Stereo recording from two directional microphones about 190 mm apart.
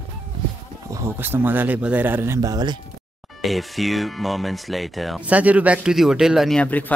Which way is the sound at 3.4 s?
Centre (ahead or behind).